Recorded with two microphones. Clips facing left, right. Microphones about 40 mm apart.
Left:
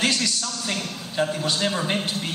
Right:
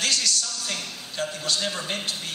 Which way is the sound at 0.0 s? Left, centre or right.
Left.